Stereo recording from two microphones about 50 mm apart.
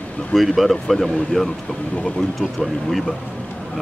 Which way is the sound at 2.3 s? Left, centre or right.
Centre.